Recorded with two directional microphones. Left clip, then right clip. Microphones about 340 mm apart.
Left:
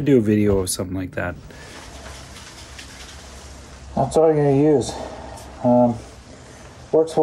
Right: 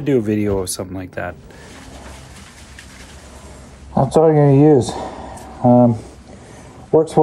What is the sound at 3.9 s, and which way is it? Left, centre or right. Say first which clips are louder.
Speech: right 3 dB; right.